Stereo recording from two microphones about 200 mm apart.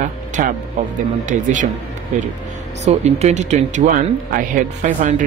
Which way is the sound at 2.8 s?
35° right (ahead or behind).